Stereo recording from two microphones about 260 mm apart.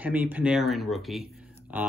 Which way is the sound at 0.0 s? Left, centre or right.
Centre.